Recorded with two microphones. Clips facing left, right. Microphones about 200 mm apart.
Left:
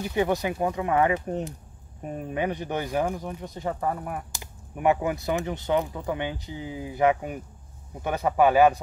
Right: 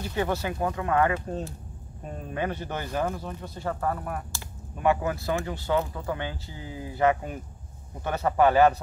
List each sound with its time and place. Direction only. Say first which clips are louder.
0.0 s speech: left 3 dB; 15° left (ahead or behind)